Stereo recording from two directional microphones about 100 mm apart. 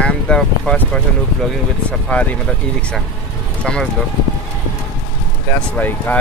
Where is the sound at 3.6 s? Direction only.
10° left (ahead or behind).